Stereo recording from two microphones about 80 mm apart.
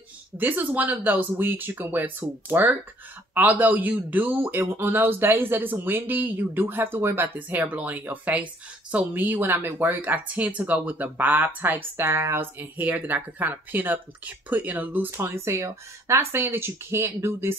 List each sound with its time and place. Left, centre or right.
0.4 s speech: right
15.0 s speech: right